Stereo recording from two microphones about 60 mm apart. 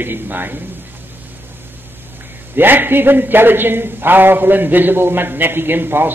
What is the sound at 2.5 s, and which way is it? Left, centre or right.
A man's voice, right.